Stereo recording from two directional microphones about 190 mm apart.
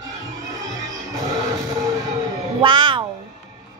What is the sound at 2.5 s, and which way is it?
Music, 25° right (ahead or behind).